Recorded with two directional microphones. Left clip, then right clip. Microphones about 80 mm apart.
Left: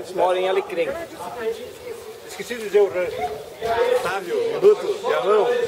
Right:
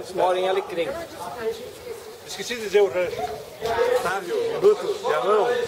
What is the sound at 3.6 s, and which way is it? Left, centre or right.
A man's voice, centre.